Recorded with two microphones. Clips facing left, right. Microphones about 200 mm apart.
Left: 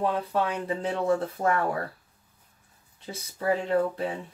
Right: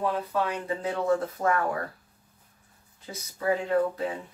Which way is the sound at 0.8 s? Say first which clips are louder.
Even; 30° left (ahead or behind).